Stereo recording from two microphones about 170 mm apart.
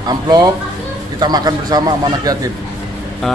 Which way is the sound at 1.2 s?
25° right (ahead or behind).